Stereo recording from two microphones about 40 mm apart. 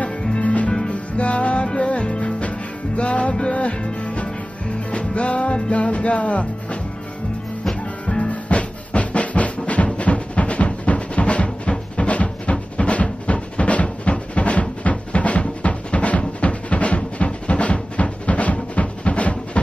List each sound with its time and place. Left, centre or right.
0.0 s music: left
8.2 s music: left